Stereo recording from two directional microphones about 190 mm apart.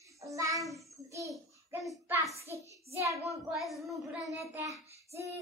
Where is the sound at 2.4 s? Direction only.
15° right (ahead or behind).